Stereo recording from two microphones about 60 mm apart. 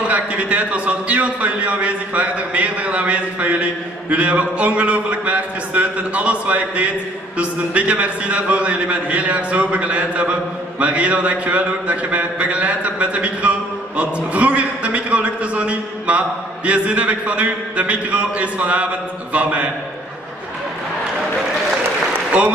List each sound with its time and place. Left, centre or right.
0.1 s a man's voice: right